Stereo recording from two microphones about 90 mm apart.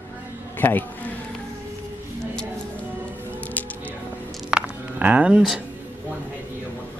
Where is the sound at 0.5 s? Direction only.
20° left (ahead or behind).